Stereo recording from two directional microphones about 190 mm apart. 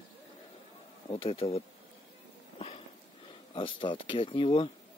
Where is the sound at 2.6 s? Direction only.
30° left (ahead or behind).